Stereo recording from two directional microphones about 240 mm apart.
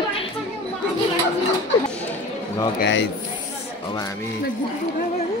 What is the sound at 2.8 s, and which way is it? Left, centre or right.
Speech, left.